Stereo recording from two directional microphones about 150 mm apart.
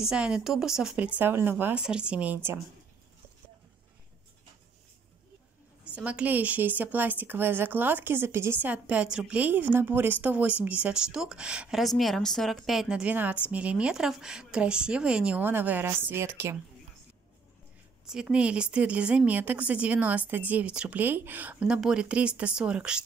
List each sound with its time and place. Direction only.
0.0 s a woman's voice: 5° right (ahead or behind)
5.9 s a woman's voice: 10° right (ahead or behind)
18.0 s a woman's voice: 5° right (ahead or behind)